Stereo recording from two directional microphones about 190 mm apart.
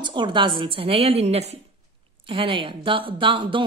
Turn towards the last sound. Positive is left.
turn(degrees=-25)  # may be behind; listen again after turning